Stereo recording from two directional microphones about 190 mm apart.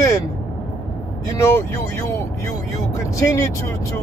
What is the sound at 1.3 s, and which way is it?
Speech, 15° left (ahead or behind).